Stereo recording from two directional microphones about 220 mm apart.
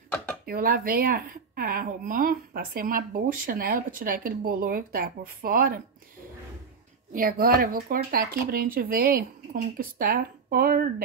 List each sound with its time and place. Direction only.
0.5 s a woman's voice: 40° right (ahead or behind)
7.1 s a woman's voice: 40° right (ahead or behind)